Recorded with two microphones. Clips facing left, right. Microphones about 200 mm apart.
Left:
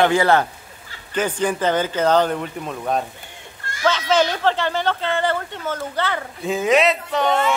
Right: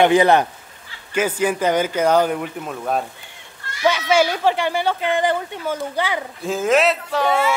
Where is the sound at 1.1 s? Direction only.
10° right (ahead or behind).